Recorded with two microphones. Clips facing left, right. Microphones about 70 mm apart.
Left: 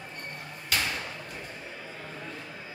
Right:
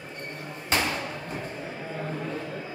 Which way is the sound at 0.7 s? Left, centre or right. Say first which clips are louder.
Right 4 dB; right.